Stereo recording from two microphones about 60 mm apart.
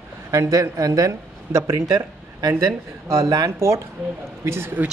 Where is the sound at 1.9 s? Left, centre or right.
Right.